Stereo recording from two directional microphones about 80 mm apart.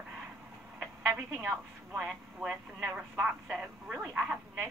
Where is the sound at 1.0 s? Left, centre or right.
Right.